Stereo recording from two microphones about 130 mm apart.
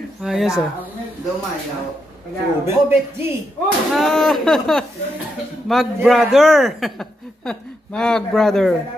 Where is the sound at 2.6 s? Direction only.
20° right (ahead or behind).